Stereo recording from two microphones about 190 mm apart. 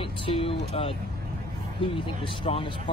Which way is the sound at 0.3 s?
30° left (ahead or behind).